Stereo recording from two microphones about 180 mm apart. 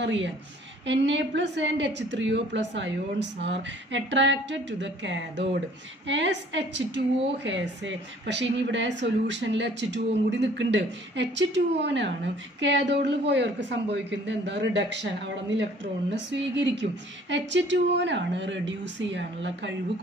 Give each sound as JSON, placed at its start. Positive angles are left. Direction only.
{"t": 0.0, "sound": "a woman's voice", "side_deg": -80}